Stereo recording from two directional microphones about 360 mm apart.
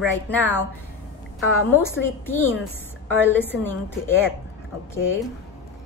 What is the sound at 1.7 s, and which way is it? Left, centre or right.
A woman's voice, centre.